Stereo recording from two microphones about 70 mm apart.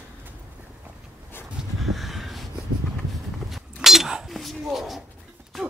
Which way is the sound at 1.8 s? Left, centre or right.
Centre.